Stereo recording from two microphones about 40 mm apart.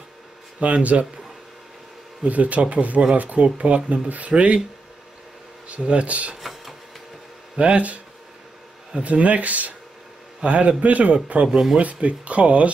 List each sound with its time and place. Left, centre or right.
0.6 s speech: right
2.2 s speech: right
5.7 s speech: right
7.5 s speech: right
11.4 s speech: centre
11.8 s speech: right